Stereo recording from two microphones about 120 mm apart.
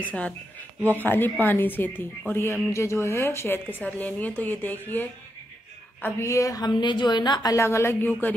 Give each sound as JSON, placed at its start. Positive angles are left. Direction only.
{"t": 0.0, "sound": "a woman's voice", "side_deg": 10}
{"t": 7.5, "sound": "speech", "side_deg": 20}